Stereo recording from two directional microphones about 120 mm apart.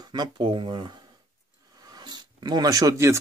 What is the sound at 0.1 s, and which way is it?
Speech, 35° right (ahead or behind).